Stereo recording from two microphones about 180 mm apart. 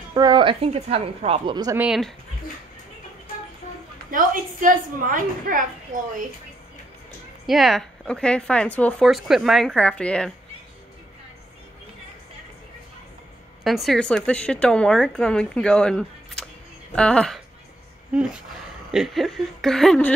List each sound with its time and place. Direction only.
0.1 s a woman's voice: 25° right (ahead or behind)
1.8 s speech: centre (ahead or behind)
4.1 s a woman's voice: 50° right (ahead or behind)
7.4 s speech: centre (ahead or behind)
13.7 s speech: centre (ahead or behind)
18.9 s speech: centre (ahead or behind)